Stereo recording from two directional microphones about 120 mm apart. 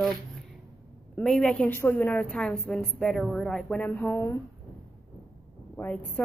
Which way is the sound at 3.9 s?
20° left (ahead or behind).